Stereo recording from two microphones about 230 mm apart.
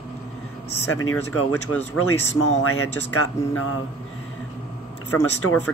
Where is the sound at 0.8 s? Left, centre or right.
Left.